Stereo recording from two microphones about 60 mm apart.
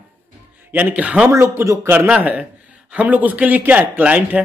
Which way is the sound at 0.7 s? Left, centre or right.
Right.